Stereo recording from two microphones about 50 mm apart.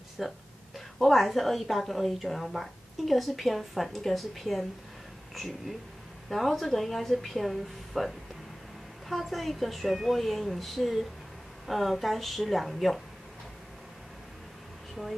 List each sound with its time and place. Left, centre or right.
0.2 s a woman's voice: centre
9.1 s a woman's voice: centre
15.0 s speech: centre